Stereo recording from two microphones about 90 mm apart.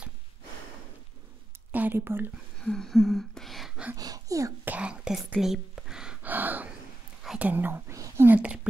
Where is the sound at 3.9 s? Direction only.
40° right (ahead or behind).